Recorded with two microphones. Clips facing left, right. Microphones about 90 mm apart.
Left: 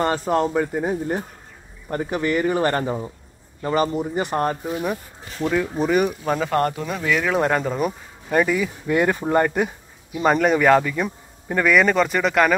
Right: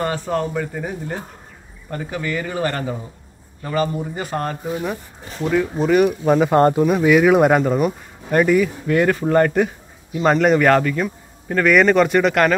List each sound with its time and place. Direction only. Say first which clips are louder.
0.1 s speech: left 2 dB; 30° left (ahead or behind)
5.4 s speech: right 2 dB; centre (ahead or behind)
6.0 s speech: right 7 dB; 10° right (ahead or behind)
6.5 s speech: right 7 dB; 25° right (ahead or behind); by 8.6 s centre (ahead or behind)
8.8 s a man's voice: right 3 dB; 15° left (ahead or behind)
11.6 s speech: right 3 dB; centre (ahead or behind)